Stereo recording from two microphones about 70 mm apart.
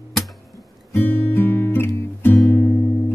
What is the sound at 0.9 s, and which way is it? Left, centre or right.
Music, left.